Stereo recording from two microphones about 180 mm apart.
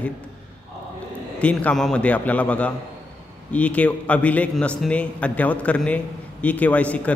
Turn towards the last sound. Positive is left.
turn(degrees=10)  # may be behind; listen again after turning